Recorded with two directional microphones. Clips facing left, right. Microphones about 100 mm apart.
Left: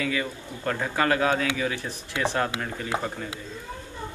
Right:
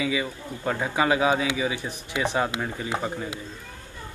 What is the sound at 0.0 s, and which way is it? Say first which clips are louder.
Speech: right 1 dB; 10° right (ahead or behind).